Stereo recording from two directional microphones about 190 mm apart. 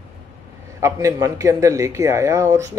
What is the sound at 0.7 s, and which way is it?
A man's voice, 15° right (ahead or behind).